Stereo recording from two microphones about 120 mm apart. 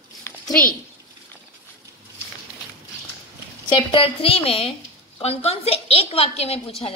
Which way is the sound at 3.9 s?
50° left (ahead or behind).